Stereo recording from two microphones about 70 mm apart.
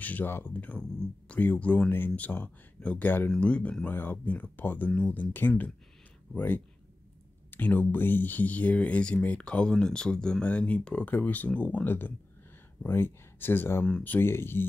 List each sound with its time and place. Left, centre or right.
0.0 s speech: left
3.3 s speech: centre
3.8 s speech: left